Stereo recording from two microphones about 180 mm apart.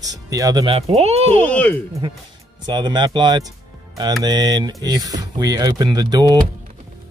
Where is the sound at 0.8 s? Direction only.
35° right (ahead or behind).